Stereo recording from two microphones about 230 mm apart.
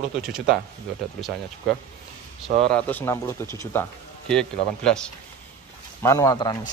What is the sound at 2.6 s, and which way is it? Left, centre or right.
Speech, centre.